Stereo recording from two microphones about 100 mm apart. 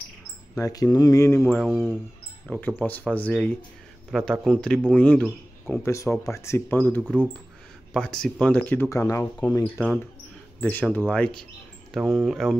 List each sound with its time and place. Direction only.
0.6 s speech: 35° left (ahead or behind)
1.5 s speech: centre (ahead or behind)
2.5 s a man's voice: 15° left (ahead or behind)
5.9 s speech: 30° left (ahead or behind)
7.9 s a man's voice: 10° left (ahead or behind)
8.8 s speech: 30° left (ahead or behind)
10.6 s a man's voice: 15° left (ahead or behind)
11.9 s speech: centre (ahead or behind)